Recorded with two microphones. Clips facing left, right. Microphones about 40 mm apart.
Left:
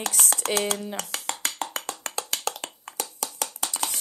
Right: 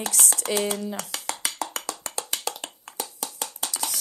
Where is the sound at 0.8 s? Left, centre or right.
Left.